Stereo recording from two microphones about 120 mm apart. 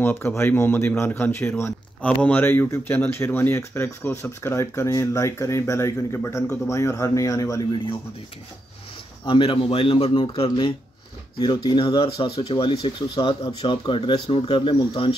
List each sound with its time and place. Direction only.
0.0 s speech: 20° left (ahead or behind)
9.2 s speech: 45° left (ahead or behind)